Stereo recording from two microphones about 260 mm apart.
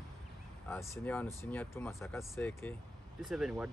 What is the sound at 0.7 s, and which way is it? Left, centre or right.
Speech, centre.